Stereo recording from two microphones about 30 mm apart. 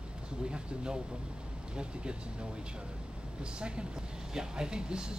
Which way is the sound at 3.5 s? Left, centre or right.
Right.